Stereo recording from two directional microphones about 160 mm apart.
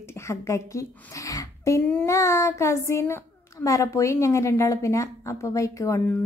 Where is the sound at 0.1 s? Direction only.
20° left (ahead or behind).